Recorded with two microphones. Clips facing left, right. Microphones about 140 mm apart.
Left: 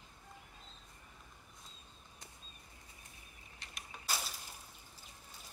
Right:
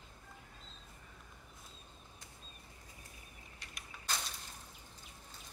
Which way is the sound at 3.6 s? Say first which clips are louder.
Left 2 dB; 25° left (ahead or behind).